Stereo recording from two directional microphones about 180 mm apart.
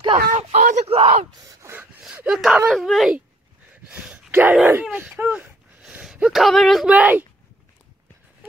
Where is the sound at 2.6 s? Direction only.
Centre (ahead or behind).